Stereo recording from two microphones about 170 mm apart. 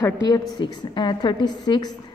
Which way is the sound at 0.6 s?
25° left (ahead or behind).